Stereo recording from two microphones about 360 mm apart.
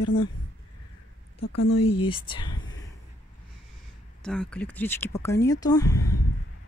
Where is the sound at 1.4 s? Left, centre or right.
Left.